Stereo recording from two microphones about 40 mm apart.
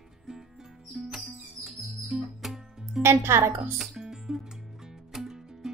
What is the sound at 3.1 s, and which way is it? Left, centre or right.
Speech, right.